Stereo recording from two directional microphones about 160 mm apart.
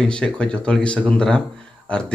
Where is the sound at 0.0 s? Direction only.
5° left (ahead or behind).